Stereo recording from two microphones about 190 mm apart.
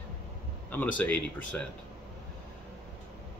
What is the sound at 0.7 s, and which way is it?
Speech, 10° left (ahead or behind).